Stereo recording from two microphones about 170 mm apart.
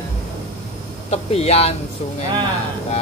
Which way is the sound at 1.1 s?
35° left (ahead or behind).